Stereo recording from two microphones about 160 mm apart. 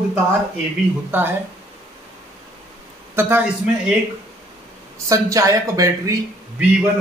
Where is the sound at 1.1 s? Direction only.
15° right (ahead or behind).